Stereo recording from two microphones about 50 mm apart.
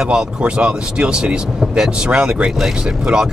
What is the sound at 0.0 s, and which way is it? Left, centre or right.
Speech, centre.